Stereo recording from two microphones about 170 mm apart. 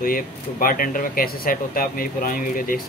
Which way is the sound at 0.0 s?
55° left (ahead or behind).